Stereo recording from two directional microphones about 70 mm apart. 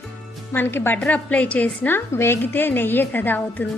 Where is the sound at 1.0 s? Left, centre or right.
Left.